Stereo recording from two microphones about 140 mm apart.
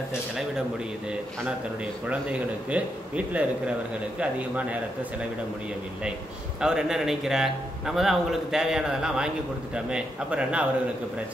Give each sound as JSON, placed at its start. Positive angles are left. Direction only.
{"t": 0.1, "sound": "a man's voice", "side_deg": -5}
{"t": 2.7, "sound": "speech", "side_deg": -10}
{"t": 6.6, "sound": "a man's voice", "side_deg": -5}